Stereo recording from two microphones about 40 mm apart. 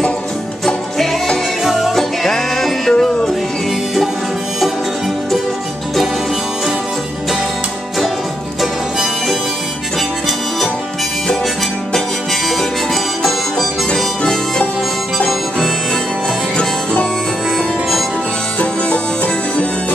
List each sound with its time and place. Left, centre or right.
0.9 s music: centre
1.6 s music: centre
13.2 s harmonica: centre
16.5 s harmonica: left
18.6 s music: left